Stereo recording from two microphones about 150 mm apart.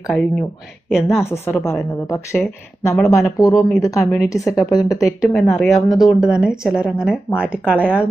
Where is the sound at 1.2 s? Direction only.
15° left (ahead or behind).